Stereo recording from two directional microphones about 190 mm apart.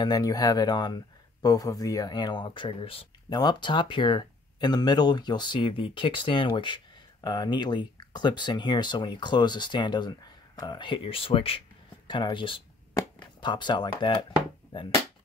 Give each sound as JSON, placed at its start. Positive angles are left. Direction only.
{"t": 0.0, "sound": "speech", "side_deg": 20}